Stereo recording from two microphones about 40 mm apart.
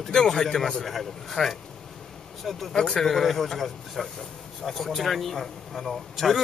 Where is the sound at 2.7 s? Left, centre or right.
Centre.